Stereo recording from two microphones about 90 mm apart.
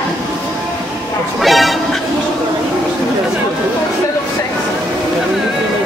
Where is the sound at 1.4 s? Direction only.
Centre (ahead or behind).